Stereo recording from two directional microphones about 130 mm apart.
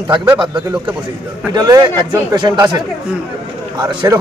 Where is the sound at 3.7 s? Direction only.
35° right (ahead or behind).